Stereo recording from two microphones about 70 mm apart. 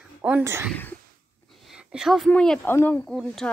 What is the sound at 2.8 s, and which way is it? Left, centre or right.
Speech, left.